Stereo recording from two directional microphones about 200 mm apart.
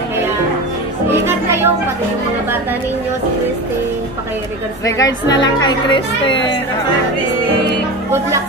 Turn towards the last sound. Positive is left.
turn(degrees=25)  # may be behind; listen again after turning